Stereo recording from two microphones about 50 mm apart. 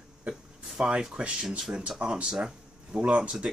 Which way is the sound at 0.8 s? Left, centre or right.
Centre.